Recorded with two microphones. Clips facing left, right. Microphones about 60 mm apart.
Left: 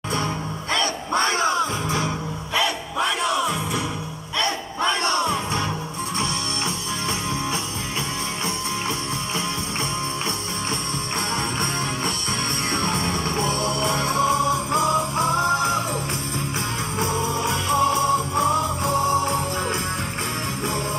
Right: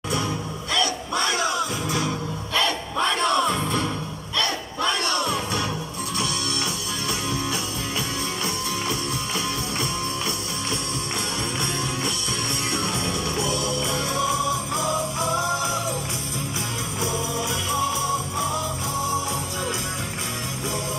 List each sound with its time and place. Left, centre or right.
0.7 s music: left
2.5 s music: centre
4.4 s battle cry: left
12.7 s music: left
17.0 s music: left